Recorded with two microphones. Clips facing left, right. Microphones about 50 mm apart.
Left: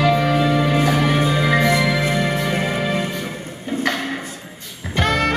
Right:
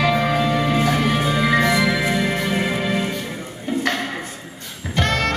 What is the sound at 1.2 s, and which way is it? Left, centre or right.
Music, centre.